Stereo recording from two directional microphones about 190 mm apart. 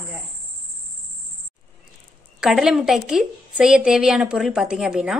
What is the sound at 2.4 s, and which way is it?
A woman's voice, 5° right (ahead or behind).